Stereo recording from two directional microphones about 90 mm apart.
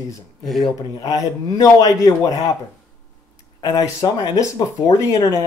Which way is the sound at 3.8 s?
40° left (ahead or behind).